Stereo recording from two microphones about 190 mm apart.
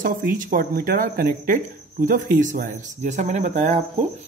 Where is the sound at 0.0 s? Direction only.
45° right (ahead or behind).